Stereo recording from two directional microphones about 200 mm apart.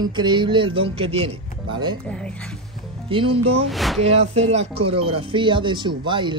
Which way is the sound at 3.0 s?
25° right (ahead or behind).